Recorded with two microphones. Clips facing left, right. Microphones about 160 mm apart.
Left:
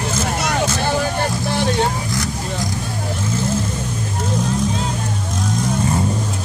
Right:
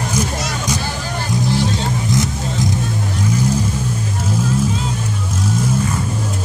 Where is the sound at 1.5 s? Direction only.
60° left (ahead or behind).